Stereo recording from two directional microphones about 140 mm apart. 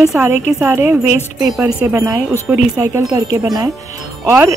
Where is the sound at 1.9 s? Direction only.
20° right (ahead or behind).